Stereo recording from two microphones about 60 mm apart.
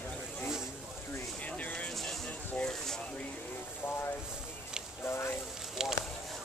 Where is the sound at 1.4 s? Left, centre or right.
Left.